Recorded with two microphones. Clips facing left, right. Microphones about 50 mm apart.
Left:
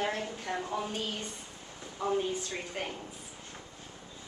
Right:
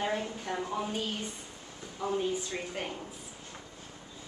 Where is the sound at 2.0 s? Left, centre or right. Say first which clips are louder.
Even; centre.